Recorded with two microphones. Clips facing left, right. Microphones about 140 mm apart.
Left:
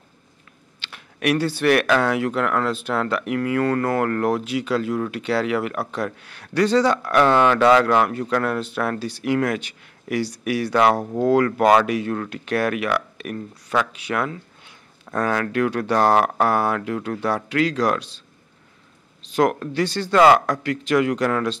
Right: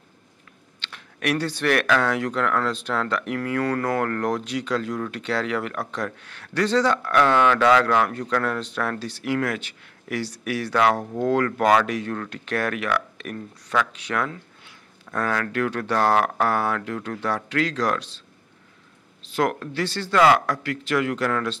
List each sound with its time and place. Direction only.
0.7 s speech: 10° left (ahead or behind)
19.2 s a man's voice: 20° left (ahead or behind)